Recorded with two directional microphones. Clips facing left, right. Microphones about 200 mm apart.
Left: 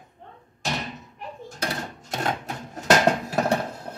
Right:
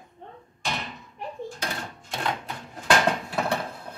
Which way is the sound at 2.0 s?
45° left (ahead or behind).